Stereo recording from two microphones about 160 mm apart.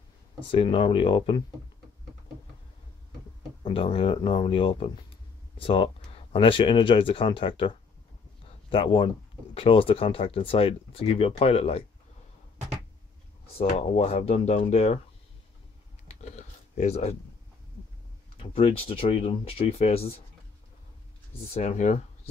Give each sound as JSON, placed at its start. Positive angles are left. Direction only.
{"t": 0.5, "sound": "speech", "side_deg": 35}
{"t": 3.6, "sound": "speech", "side_deg": 35}
{"t": 13.6, "sound": "speech", "side_deg": 45}
{"t": 16.1, "sound": "a sound", "side_deg": 45}
{"t": 18.5, "sound": "speech", "side_deg": 35}
{"t": 21.5, "sound": "speech", "side_deg": 45}